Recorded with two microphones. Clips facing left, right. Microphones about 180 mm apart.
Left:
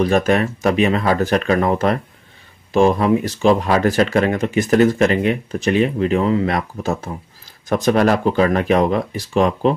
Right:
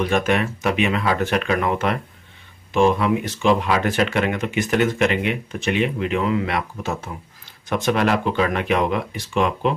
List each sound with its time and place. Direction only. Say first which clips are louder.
0.0 s speech: left 4 dB; 40° left (ahead or behind)